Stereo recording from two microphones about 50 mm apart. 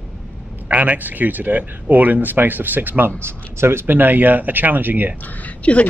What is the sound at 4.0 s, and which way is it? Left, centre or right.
Speech, right.